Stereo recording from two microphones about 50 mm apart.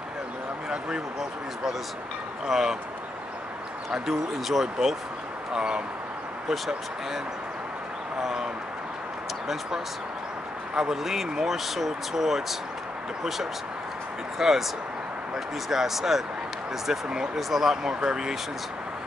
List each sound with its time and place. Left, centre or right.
0.7 s a sound: centre
2.4 s speech: centre
3.9 s speech: centre
8.2 s speech: centre
10.7 s speech: centre
14.4 s speech: centre